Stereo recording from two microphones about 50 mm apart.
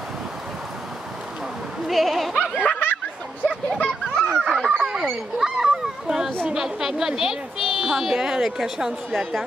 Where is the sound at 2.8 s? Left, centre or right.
Left.